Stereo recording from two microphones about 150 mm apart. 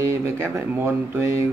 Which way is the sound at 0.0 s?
15° right (ahead or behind).